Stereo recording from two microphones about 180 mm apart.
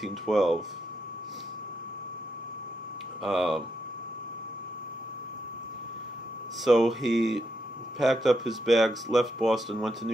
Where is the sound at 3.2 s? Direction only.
Centre (ahead or behind).